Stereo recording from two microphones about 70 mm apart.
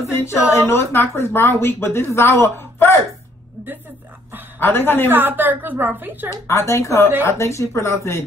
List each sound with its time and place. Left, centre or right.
0.1 s a woman's voice: left
4.6 s a woman's voice: left
5.1 s a woman's voice: right
6.3 s speech: left